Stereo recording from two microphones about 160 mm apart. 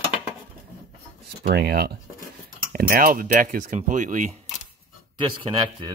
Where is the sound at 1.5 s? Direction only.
85° right.